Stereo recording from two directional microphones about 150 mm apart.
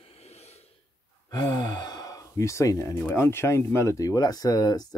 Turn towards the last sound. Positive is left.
turn(degrees=25)  # may be behind; listen again after turning